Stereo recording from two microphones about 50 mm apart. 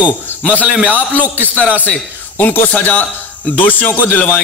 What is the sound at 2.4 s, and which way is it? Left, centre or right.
A man's voice, left.